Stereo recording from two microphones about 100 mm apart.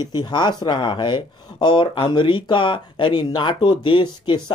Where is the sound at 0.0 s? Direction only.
45° left (ahead or behind).